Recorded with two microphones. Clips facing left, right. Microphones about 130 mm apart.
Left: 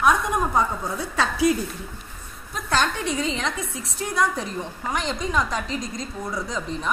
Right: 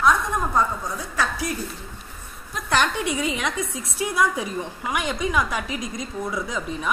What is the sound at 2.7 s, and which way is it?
A woman's voice, 15° right (ahead or behind).